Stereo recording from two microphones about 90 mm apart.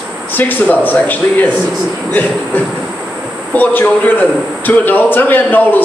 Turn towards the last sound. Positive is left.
turn(degrees=20)  # may be behind; listen again after turning